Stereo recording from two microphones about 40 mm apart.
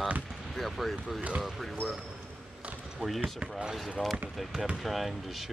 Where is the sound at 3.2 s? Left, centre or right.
Right.